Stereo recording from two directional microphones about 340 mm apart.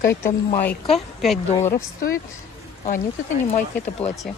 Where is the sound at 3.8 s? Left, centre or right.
Centre.